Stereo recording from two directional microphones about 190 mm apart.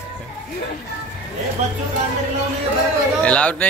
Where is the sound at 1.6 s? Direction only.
35° right (ahead or behind).